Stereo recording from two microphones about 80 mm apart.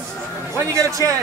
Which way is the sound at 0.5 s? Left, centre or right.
Right.